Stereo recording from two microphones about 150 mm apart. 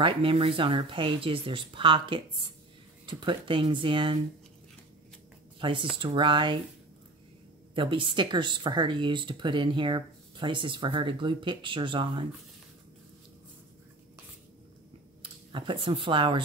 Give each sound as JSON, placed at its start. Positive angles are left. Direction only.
{"t": 0.0, "sound": "speech", "side_deg": -35}
{"t": 5.6, "sound": "speech", "side_deg": -35}
{"t": 7.7, "sound": "speech", "side_deg": -35}
{"t": 15.5, "sound": "speech", "side_deg": -35}